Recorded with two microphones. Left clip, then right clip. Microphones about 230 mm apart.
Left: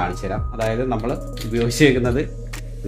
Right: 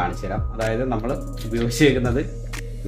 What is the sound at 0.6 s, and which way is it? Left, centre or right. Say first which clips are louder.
Speech: left 1 dB; left.